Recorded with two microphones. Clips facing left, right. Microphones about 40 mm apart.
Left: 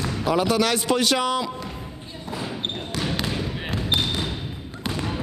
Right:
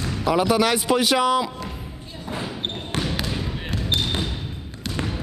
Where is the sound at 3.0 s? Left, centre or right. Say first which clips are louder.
Left 3 dB; centre.